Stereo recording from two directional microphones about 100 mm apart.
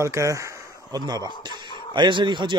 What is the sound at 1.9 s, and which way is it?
Speech, 50° right (ahead or behind).